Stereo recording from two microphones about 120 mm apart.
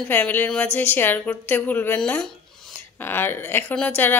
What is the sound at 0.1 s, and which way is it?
Speech, 15° left (ahead or behind).